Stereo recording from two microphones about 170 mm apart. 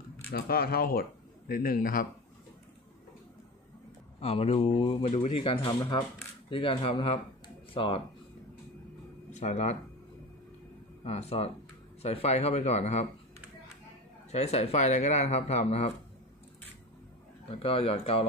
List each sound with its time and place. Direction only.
0.3 s speech: 65° left (ahead or behind)
4.2 s speech: 35° left (ahead or behind)
5.8 s speech: 20° left (ahead or behind)
6.5 s speech: 30° left (ahead or behind)
9.3 s speech: 40° left (ahead or behind)
11.1 s speech: 40° left (ahead or behind)
14.3 s speech: 40° left (ahead or behind)
17.5 s speech: 35° left (ahead or behind)